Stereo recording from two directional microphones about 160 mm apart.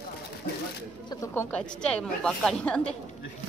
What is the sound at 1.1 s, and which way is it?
Speech, 20° left (ahead or behind).